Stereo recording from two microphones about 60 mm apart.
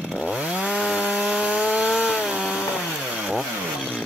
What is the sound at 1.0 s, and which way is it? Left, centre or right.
Wood, right.